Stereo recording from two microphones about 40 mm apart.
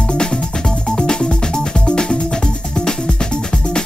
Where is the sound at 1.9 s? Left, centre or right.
Centre.